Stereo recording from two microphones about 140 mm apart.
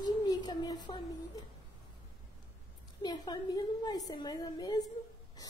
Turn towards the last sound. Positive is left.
turn(degrees=30)  # may be behind; listen again after turning